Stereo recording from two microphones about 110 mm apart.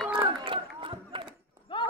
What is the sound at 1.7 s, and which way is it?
Run, 50° left (ahead or behind).